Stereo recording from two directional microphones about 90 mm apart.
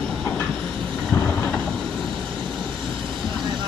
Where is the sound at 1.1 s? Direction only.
20° left (ahead or behind).